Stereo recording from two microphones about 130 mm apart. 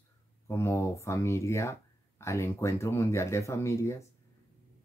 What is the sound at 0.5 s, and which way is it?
Speech, 20° left (ahead or behind).